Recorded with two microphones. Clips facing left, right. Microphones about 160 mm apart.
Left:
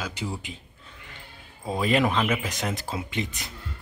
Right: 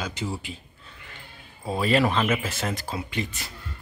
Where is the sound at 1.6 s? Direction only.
15° left (ahead or behind).